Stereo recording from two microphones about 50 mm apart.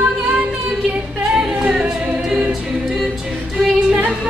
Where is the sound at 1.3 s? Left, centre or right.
Centre.